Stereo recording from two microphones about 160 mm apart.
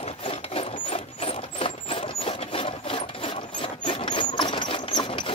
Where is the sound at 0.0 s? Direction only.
35° left (ahead or behind).